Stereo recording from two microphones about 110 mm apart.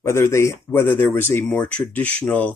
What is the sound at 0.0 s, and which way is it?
Speech, 25° left (ahead or behind).